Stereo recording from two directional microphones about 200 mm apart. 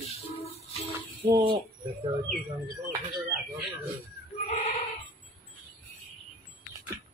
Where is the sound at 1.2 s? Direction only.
20° right (ahead or behind).